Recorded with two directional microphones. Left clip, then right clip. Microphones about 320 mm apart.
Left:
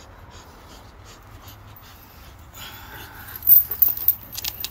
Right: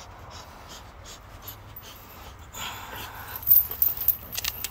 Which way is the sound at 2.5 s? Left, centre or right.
Centre.